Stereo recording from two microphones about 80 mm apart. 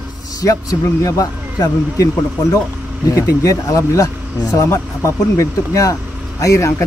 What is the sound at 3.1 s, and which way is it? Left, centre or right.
Speech, left.